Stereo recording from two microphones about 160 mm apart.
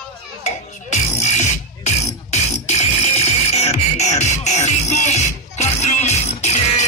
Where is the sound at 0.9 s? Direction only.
45° left (ahead or behind).